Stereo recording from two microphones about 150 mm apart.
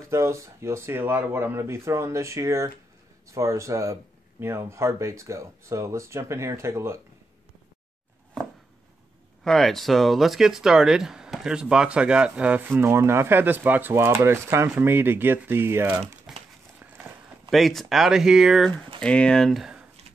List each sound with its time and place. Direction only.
0.1 s speech: 20° right (ahead or behind)
9.4 s speech: centre (ahead or behind); by 16.2 s 15° right (ahead or behind)
17.5 s speech: centre (ahead or behind)